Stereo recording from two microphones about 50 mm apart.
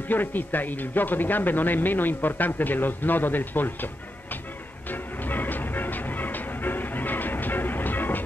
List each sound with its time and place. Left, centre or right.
0.1 s speech: left
4.8 s music: left